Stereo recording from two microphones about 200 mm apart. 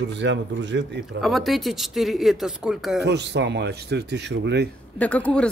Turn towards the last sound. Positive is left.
turn(degrees=5)  # may be behind; listen again after turning